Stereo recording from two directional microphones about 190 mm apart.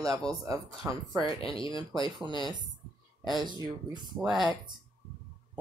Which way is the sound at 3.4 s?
25° right (ahead or behind).